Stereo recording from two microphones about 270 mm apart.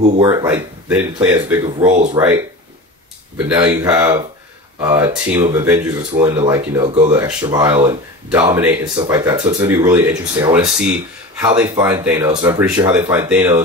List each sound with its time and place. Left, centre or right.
0.2 s speech: centre
1.6 s speech: centre
2.1 s speech: centre
7.1 s speech: centre